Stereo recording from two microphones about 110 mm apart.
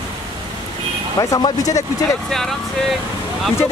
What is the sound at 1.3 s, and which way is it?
Speech, 30° left (ahead or behind).